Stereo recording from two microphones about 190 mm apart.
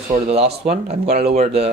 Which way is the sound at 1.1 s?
55° right (ahead or behind).